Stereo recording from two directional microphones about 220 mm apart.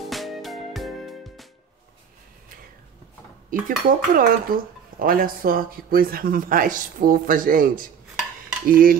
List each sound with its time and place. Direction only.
0.0 s music: centre (ahead or behind)
3.4 s dishes: 40° right (ahead or behind)